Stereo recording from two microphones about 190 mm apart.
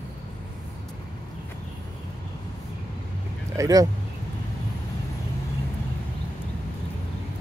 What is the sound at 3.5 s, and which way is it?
Speech, 20° right (ahead or behind).